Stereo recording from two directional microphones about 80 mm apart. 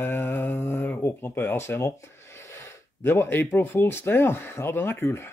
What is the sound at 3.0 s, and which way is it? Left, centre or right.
Speech, left.